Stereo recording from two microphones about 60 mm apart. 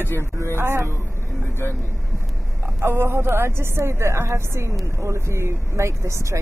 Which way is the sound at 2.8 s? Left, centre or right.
Right.